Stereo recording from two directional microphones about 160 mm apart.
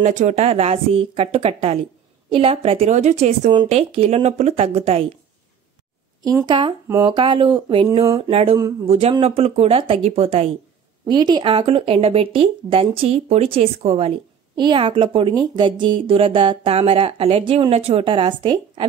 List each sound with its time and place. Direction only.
0.0 s a woman's voice: 50° right (ahead or behind)
6.2 s a woman's voice: 25° right (ahead or behind)
11.1 s a woman's voice: 25° right (ahead or behind)
14.5 s a woman's voice: 30° right (ahead or behind)